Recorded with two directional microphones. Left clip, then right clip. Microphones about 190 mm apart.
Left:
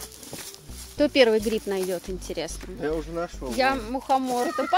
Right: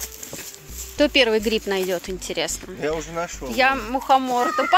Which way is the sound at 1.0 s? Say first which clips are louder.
Right 2 dB; centre (ahead or behind).